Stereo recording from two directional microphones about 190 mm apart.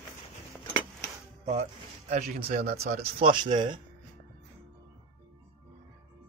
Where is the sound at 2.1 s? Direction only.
55° right (ahead or behind).